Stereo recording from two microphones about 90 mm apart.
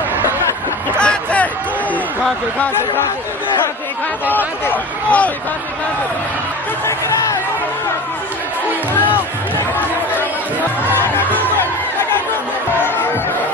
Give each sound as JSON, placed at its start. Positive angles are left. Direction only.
{"t": 0.9, "sound": "hubbub", "side_deg": 15}
{"t": 4.6, "sound": "speech", "side_deg": 15}
{"t": 8.9, "sound": "music", "side_deg": 20}
{"t": 11.0, "sound": "music", "side_deg": 20}